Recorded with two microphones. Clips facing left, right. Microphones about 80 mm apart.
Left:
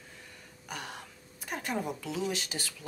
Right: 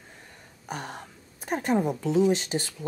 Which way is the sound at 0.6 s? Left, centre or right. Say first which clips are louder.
Right 6 dB; right.